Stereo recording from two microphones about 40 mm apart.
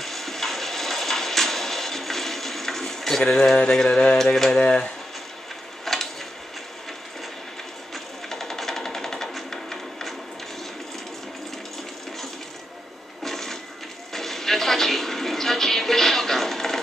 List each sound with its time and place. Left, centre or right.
0.0 s music: centre
3.5 s mantra: centre
5.9 s a sound: centre
7.9 s sewing machine: centre
13.2 s printer: centre
14.1 s a sound: centre